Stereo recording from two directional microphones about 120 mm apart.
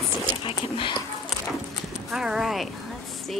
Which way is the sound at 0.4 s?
45° left (ahead or behind).